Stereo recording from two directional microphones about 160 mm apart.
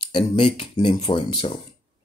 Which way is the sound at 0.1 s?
30° left (ahead or behind).